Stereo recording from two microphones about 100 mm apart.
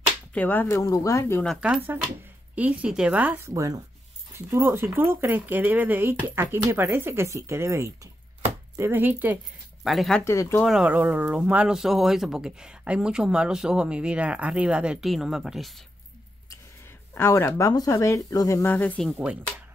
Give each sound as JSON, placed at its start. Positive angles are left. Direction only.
{"t": 0.3, "sound": "speech", "side_deg": 20}
{"t": 0.7, "sound": "speech", "side_deg": 35}
{"t": 1.6, "sound": "speech", "side_deg": -15}
{"t": 3.4, "sound": "speech", "side_deg": -35}
{"t": 9.8, "sound": "speech", "side_deg": 0}
{"t": 10.2, "sound": "speech", "side_deg": 30}
{"t": 10.9, "sound": "speech", "side_deg": -15}
{"t": 17.1, "sound": "speech", "side_deg": 25}
{"t": 18.7, "sound": "speech", "side_deg": 15}
{"t": 18.9, "sound": "speech", "side_deg": 0}